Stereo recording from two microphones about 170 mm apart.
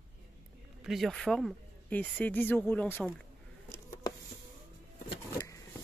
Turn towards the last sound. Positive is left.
turn(degrees=25)  # may be behind; listen again after turning